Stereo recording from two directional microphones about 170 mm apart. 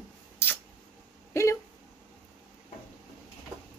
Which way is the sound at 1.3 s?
15° left (ahead or behind).